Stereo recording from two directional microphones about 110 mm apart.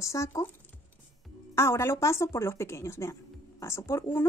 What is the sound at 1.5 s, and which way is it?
Speech, 25° left (ahead or behind).